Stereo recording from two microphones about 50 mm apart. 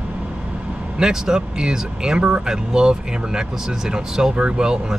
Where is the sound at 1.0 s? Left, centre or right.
Centre.